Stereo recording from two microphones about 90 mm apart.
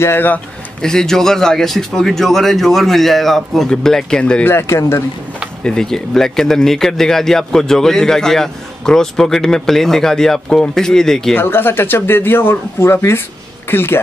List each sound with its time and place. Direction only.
0.0 s speech: 25° left (ahead or behind)
0.8 s speech: 5° left (ahead or behind)
4.5 s speech: 30° left (ahead or behind)
5.6 s speech: 5° left (ahead or behind)
11.3 s speech: 25° left (ahead or behind)